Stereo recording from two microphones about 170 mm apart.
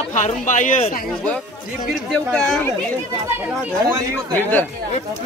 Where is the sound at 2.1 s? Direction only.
5° left (ahead or behind).